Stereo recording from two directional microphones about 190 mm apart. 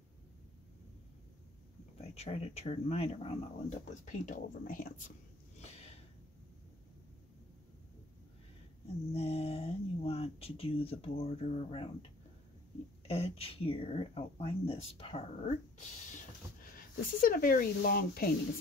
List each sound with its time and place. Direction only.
2.0 s speech: 35° left (ahead or behind)
5.6 s snort: 35° left (ahead or behind)
9.1 s speech: 35° left (ahead or behind)
13.1 s speech: 30° left (ahead or behind); by 18.3 s 50° left (ahead or behind)